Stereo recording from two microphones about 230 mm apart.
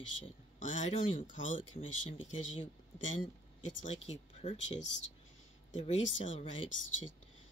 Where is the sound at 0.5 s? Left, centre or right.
Left.